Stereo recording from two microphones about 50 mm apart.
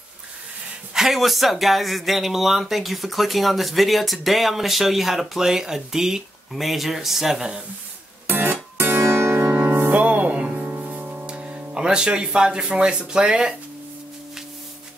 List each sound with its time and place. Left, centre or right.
0.9 s speech: centre
8.3 s music: right
9.9 s music: right
11.2 s speech: right